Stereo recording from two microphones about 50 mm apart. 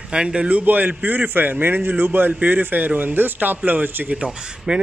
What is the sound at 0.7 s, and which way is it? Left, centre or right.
A man's voice, right.